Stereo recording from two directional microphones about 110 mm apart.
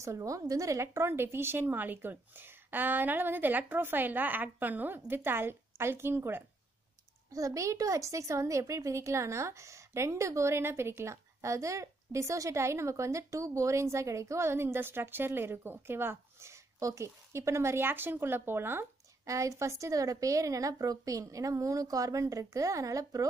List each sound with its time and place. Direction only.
0.0 s speech: 30° right (ahead or behind)